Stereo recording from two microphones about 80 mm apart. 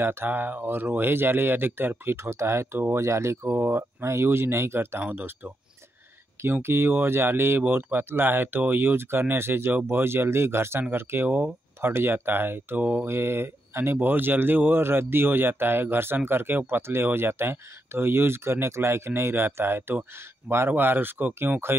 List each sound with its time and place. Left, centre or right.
0.0 s speech: right
2.1 s speech: right
11.2 s speech: centre
11.8 s speech: right
13.1 s speech: right